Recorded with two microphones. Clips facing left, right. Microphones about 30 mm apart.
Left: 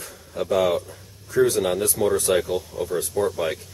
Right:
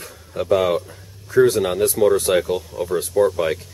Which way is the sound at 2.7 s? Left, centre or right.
Right.